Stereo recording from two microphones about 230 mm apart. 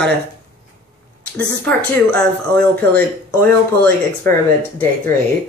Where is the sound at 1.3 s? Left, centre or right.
Centre.